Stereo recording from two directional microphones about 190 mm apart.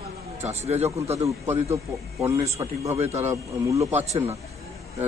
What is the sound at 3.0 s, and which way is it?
Speech, 35° right (ahead or behind).